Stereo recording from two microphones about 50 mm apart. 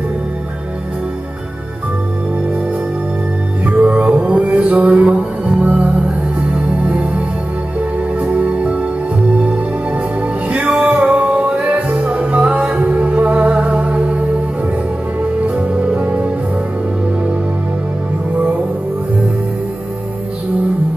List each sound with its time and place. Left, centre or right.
3.8 s music: right
6.9 s music: right